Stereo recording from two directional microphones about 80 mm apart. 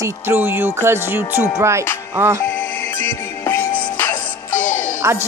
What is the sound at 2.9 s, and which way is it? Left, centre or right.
Music, left.